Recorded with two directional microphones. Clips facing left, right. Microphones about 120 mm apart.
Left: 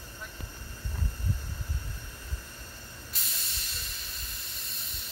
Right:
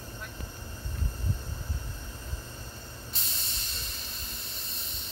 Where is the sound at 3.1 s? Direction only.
30° right (ahead or behind).